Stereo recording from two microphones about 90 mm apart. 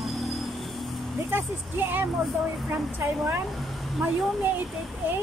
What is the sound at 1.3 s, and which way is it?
Speech, 20° right (ahead or behind).